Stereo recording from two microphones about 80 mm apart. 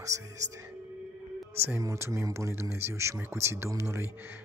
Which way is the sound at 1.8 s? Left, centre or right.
Right.